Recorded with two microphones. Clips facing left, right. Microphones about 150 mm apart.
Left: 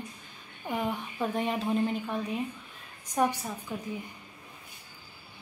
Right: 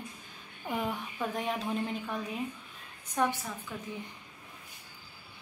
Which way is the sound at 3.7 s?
15° left (ahead or behind).